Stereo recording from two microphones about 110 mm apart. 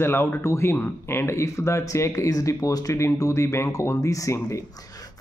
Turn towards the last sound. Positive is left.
turn(degrees=30)  # may be behind; listen again after turning